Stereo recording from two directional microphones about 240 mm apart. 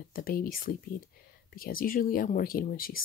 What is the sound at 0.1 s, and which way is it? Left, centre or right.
Speech, left.